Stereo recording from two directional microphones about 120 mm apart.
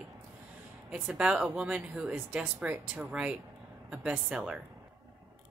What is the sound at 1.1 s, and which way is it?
Speech, 5° right (ahead or behind).